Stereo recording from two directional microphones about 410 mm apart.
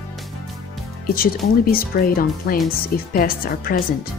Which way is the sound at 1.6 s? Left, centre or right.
Left.